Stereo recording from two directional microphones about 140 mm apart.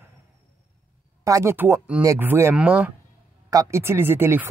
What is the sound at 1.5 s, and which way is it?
Speech, 15° right (ahead or behind).